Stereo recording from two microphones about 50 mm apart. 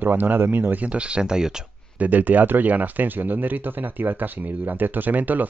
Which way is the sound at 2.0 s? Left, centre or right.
Right.